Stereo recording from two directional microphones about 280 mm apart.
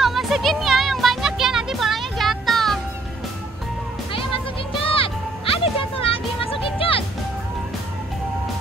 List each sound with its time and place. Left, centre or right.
0.0 s music: centre
4.1 s music: centre